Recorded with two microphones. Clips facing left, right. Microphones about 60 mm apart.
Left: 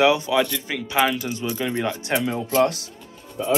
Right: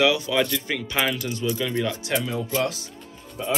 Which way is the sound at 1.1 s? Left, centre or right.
Centre.